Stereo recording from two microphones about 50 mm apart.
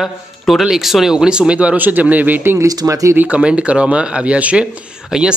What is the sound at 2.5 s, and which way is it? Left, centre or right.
Speech, right.